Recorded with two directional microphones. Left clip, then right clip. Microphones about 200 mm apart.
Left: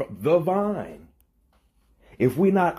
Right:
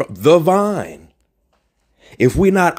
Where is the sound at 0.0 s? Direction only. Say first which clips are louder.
Right 9 dB; 50° right (ahead or behind).